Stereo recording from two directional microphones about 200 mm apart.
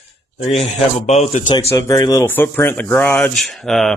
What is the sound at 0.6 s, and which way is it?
Speech, 30° left (ahead or behind).